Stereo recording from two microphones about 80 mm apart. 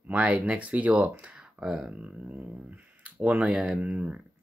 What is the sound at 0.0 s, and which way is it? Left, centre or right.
Speech, centre.